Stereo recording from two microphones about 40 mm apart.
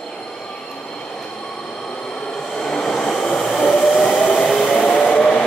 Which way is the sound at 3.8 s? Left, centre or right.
Centre.